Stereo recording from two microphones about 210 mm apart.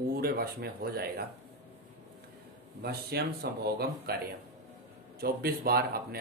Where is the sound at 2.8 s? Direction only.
50° right (ahead or behind).